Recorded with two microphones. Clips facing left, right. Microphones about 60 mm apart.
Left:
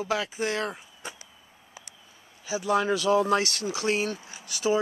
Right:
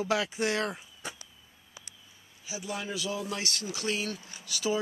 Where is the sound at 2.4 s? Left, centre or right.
Left.